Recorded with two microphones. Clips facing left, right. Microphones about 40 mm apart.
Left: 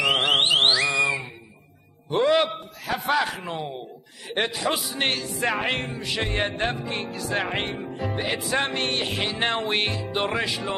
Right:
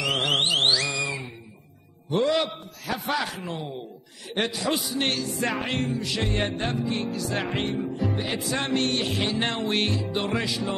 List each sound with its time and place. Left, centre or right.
0.0 s music: left
2.0 s a man's voice: centre
5.6 s a man's voice: left
5.9 s music: left
6.5 s a man's voice: left
7.4 s music: left
8.5 s a man's voice: left